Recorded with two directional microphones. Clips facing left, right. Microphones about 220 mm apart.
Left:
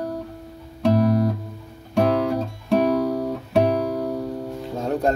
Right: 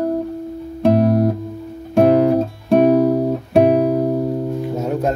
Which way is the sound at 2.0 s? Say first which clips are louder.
Right 7 dB; 55° right (ahead or behind).